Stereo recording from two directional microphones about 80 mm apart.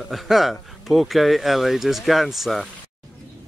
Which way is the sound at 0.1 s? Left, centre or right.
Centre.